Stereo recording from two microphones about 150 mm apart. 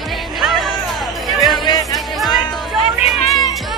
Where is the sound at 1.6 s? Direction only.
25° left (ahead or behind).